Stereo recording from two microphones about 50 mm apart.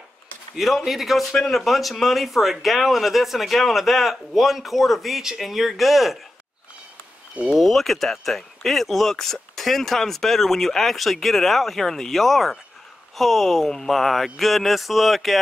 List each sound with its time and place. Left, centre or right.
0.6 s speech: centre
7.5 s speech: centre